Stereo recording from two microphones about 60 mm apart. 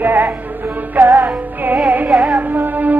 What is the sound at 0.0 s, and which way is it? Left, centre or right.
Music, right.